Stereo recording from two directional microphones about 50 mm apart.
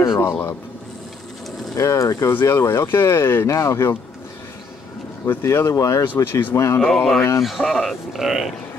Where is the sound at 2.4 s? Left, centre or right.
Left.